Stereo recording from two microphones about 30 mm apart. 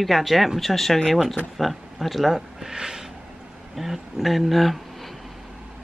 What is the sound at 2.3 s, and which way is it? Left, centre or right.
Speech, centre.